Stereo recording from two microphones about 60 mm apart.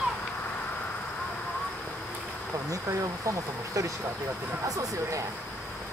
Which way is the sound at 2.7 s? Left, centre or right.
Right.